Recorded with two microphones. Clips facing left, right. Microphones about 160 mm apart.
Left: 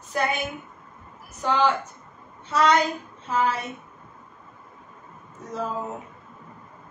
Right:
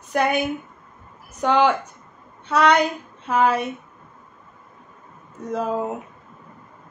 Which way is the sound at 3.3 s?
65° right (ahead or behind).